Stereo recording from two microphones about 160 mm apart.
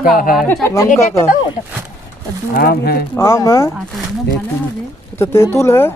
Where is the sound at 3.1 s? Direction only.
15° left (ahead or behind).